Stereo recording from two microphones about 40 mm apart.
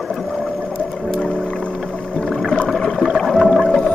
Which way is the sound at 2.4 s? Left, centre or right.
Left.